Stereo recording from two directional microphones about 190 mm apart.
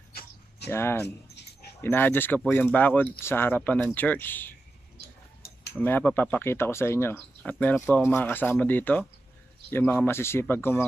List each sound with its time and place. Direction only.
0.7 s speech: 10° left (ahead or behind)
1.0 s keys jangling: 60° left (ahead or behind)
1.8 s speech: 10° left (ahead or behind)
5.7 s speech: 10° left (ahead or behind)